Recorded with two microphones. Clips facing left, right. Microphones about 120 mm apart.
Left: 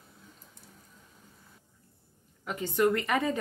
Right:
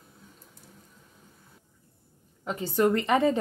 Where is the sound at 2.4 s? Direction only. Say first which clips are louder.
Right 2 dB; 30° right (ahead or behind).